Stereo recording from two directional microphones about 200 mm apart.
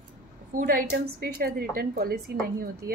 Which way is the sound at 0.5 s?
45° right (ahead or behind).